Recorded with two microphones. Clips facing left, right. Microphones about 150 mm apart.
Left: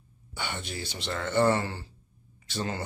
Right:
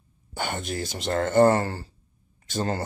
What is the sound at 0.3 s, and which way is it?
Speech, 45° right (ahead or behind).